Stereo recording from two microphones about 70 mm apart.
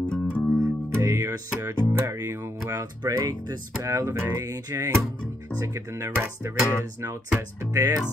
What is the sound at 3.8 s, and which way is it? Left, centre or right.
Speech, right.